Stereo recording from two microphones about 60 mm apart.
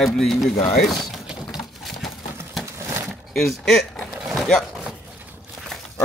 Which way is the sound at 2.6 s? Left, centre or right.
Right.